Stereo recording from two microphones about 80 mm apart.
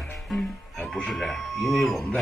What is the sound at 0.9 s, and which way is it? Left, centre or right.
Ding, centre.